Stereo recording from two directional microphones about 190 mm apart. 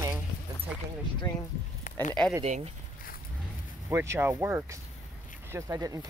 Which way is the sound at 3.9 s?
15° right (ahead or behind).